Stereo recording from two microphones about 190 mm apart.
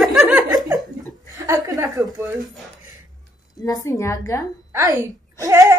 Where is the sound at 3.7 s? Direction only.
15° left (ahead or behind).